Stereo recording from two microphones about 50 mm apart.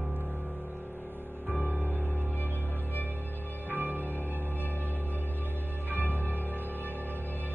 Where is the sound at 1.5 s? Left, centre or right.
Left.